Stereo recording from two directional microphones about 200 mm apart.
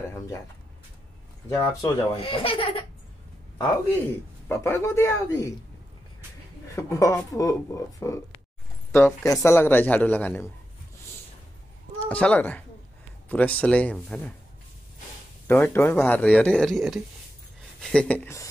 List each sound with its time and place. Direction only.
1.5 s a man's voice: 15° left (ahead or behind)
2.1 s speech: 30° left (ahead or behind)
4.5 s a man's voice: 15° left (ahead or behind)
6.7 s a man's voice: 15° left (ahead or behind)
12.0 s a man's voice: 5° left (ahead or behind)
15.4 s a man's voice: 10° left (ahead or behind)